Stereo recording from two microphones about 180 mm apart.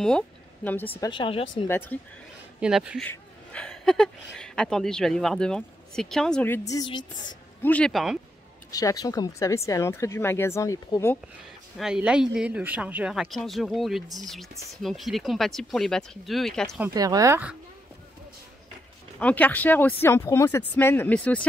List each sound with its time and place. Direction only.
0.7 s speech: 10° left (ahead or behind)
1.1 s speech: 25° left (ahead or behind)
1.7 s speech: 10° left (ahead or behind)
2.6 s speech: 5° right (ahead or behind)
3.0 s speech: 5° left (ahead or behind)
7.6 s speech: 5° left (ahead or behind)
8.7 s speech: 20° left (ahead or behind)
11.8 s speech: 5° right (ahead or behind)
16.8 s speech: 20° right (ahead or behind)
19.1 s speech: 10° left (ahead or behind)